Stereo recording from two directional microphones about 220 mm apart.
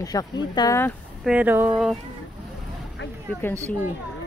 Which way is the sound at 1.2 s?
5° right (ahead or behind).